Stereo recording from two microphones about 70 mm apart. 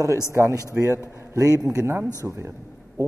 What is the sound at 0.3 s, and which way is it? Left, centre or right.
A man's voice, right.